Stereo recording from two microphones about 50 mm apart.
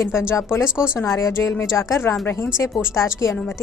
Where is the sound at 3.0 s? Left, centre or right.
Left.